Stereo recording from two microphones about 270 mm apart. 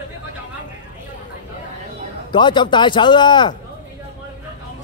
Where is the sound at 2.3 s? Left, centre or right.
Centre.